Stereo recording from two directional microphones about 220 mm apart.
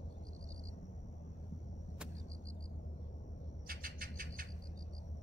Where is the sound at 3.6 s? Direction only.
40° right (ahead or behind).